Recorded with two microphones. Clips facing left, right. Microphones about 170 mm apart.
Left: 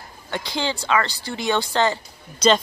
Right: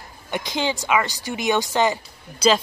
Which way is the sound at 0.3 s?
15° right (ahead or behind).